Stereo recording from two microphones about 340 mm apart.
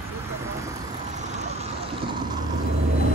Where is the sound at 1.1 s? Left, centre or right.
Right.